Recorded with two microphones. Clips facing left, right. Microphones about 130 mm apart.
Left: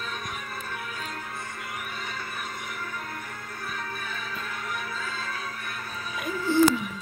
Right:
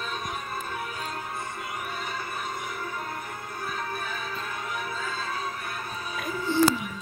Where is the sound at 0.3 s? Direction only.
20° right (ahead or behind).